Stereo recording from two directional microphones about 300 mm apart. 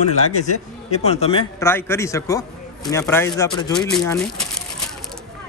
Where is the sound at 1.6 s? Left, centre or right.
Centre.